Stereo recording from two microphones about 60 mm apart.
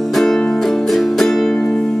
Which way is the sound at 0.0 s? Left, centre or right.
Centre.